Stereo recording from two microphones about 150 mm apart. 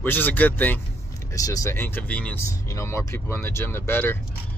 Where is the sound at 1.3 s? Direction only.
20° left (ahead or behind).